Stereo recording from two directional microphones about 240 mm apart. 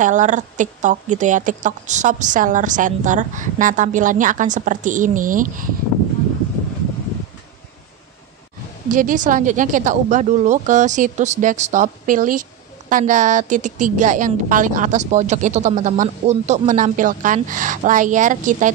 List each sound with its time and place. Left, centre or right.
0.0 s a woman's voice: right
8.9 s a woman's voice: right